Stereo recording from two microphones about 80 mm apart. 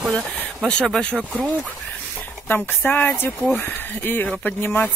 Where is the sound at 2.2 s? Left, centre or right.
Left.